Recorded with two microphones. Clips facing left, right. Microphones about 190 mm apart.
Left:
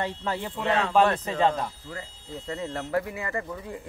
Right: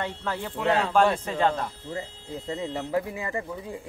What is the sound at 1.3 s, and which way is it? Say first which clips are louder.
Speech: left 1 dB; 5° right (ahead or behind).